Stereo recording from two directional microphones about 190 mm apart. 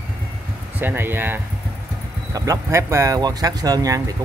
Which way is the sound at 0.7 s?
10° right (ahead or behind).